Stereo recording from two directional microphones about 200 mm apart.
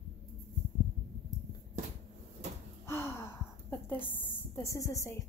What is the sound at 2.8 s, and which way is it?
A woman's voice, 15° left (ahead or behind).